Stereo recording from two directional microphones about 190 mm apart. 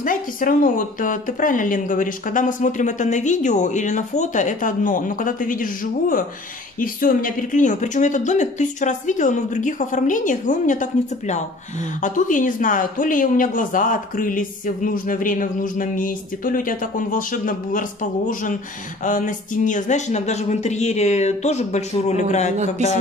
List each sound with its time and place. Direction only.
0.0 s speech: 45° left (ahead or behind)